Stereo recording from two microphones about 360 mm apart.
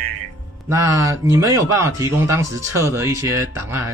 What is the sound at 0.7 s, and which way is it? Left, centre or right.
Speech, centre.